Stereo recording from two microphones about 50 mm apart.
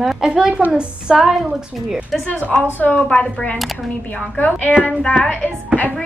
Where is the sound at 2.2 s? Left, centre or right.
Left.